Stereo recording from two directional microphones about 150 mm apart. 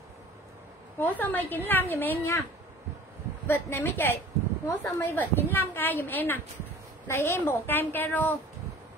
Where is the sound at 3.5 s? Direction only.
15° left (ahead or behind).